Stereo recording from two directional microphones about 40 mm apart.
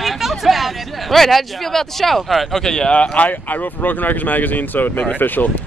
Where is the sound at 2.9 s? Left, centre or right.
Left.